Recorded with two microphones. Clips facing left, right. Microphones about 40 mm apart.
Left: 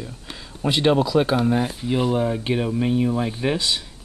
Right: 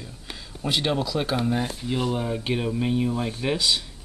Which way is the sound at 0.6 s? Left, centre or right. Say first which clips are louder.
Left 6 dB; centre.